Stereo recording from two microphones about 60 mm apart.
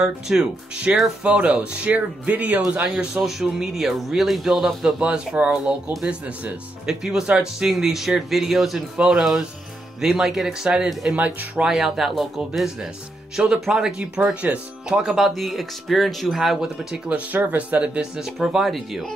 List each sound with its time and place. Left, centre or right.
0.0 s speech: centre
0.9 s speech: right
3.2 s speech: centre
5.0 s speech: centre
6.9 s speech: centre
11.1 s speech: right
11.6 s speech: centre
15.0 s speech: centre
17.1 s speech: right; by 19.0 s centre